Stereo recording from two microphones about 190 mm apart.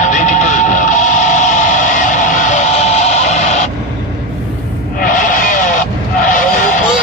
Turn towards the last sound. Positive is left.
turn(degrees=45)  # may be behind; listen again after turning